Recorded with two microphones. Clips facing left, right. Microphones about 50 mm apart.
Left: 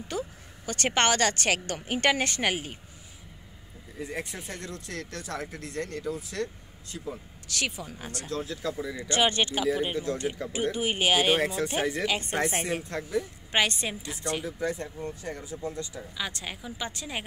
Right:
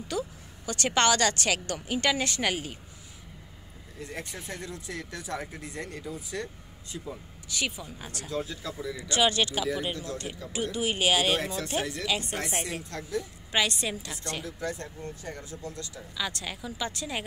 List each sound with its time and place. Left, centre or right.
0.1 s a sound: left
0.7 s a woman's voice: left
4.0 s speech: centre
4.6 s speech: centre
7.4 s speech: left
8.3 s speech: centre
8.8 s speech: centre
9.1 s a woman's voice: left
12.1 s a woman's voice: left
14.0 s speech: centre